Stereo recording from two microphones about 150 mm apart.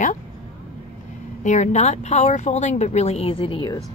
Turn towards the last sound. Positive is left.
turn(degrees=35)  # may be behind; listen again after turning